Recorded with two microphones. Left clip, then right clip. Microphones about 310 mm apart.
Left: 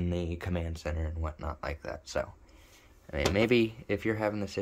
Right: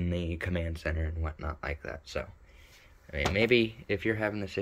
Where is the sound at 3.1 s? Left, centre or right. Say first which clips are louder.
Right 1 dB; centre.